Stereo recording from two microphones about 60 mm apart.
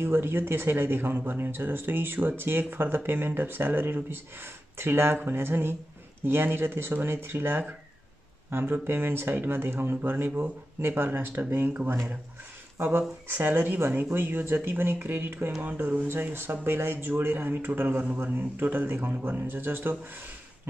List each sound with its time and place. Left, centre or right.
0.0 s speech: right
15.8 s speech: right
16.1 s speech: right